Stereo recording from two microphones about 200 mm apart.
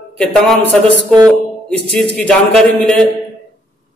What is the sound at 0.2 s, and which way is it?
A man's voice, 5° left (ahead or behind).